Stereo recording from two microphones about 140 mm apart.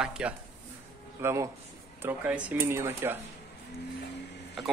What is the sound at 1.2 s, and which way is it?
Speech, 20° right (ahead or behind).